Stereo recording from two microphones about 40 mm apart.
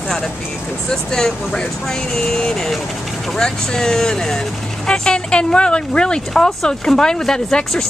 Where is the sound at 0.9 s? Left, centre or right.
Centre.